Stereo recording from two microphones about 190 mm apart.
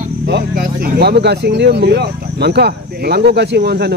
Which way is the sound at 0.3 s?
50° right (ahead or behind).